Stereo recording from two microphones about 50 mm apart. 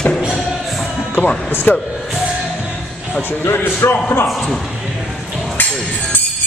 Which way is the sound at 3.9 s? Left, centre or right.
Left.